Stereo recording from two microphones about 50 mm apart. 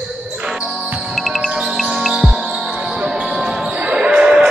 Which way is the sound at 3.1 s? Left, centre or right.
Centre.